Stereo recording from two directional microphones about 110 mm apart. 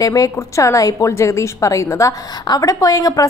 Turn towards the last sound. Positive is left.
turn(degrees=35)  # may be behind; listen again after turning